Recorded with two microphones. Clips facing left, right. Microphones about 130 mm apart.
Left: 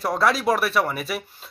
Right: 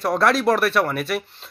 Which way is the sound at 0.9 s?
60° right (ahead or behind).